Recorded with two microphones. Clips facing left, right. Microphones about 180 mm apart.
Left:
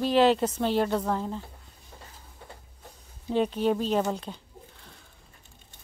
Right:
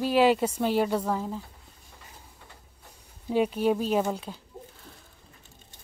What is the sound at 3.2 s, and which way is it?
Speech, 10° right (ahead or behind).